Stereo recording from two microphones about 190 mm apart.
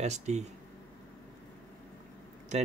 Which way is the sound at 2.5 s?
40° right (ahead or behind).